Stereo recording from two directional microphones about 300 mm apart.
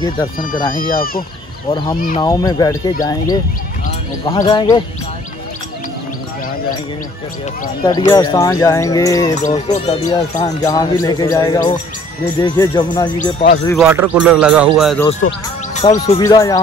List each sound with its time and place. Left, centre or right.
0.9 s speech: left
1.7 s speech: centre
2.0 s speech: left
2.2 s speech: centre
4.2 s speech: centre
7.8 s speech: centre
13.7 s a man's voice: centre
15.7 s speech: left
16.2 s speech: centre